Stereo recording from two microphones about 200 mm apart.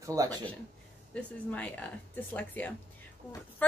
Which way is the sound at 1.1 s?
5° left (ahead or behind).